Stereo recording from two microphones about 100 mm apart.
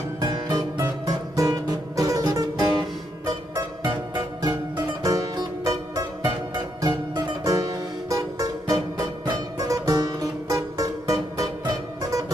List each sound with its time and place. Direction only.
0.2 s music: 40° right (ahead or behind)